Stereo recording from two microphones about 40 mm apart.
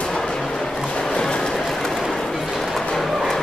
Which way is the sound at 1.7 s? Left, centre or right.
Centre.